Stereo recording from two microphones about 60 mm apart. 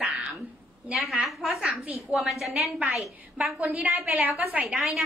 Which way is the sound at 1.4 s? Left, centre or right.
Right.